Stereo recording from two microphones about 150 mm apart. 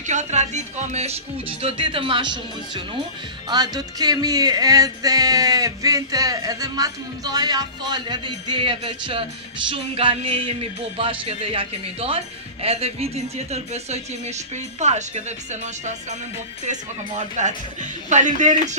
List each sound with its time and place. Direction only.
0.0 s speech: 50° right (ahead or behind); by 3.0 s 30° right (ahead or behind)
3.4 s music: 25° right (ahead or behind)
9.7 s speech: 35° right (ahead or behind)
18.1 s speech: 55° right (ahead or behind)